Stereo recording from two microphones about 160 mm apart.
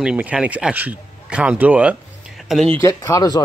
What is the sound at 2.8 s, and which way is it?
Speech, 20° left (ahead or behind).